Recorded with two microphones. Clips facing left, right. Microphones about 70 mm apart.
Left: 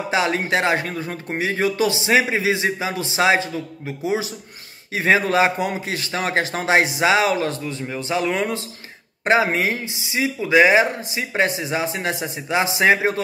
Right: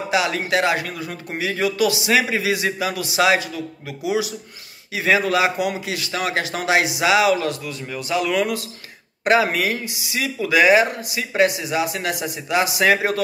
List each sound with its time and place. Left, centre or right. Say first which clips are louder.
0.1 s speech: even; left